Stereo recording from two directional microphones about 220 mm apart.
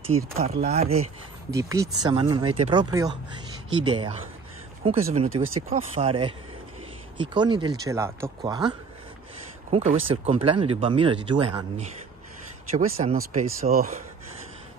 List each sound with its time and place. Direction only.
0.0 s speech: 30° right (ahead or behind)
1.5 s speech: 15° right (ahead or behind)
12.7 s speech: 35° right (ahead or behind)